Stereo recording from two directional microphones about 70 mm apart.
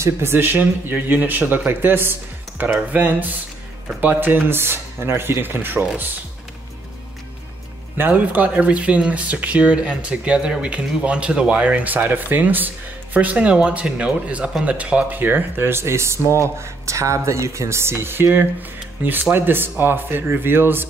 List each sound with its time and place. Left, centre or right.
0.0 s speech: right
8.0 s speech: right